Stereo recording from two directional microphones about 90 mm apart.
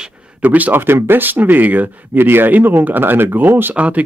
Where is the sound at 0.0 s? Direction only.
10° right (ahead or behind).